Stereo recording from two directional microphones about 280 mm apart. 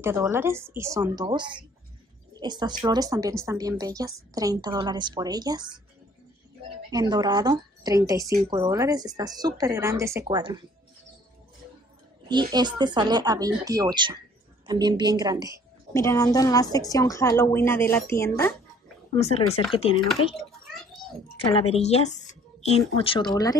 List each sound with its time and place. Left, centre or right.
0.0 s a woman's voice: centre
6.9 s a woman's voice: centre
12.3 s a woman's voice: centre
15.9 s a woman's voice: centre
19.1 s a woman's voice: left
21.5 s a woman's voice: left